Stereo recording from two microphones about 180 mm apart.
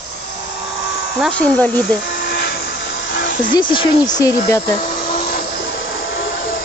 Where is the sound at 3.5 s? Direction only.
25° left (ahead or behind).